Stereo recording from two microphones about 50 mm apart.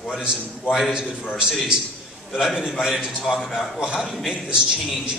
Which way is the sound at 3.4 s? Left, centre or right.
Centre.